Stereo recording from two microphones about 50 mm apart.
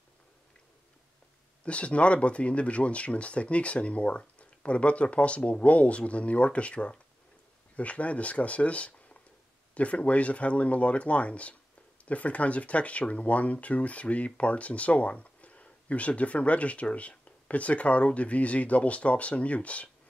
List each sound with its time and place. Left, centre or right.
1.6 s speech: left